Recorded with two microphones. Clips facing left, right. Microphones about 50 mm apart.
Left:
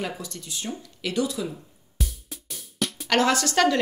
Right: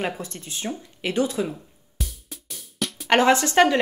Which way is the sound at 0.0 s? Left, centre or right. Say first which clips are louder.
Right 3 dB; right.